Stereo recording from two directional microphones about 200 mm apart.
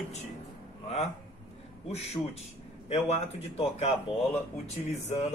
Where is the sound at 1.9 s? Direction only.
30° left (ahead or behind).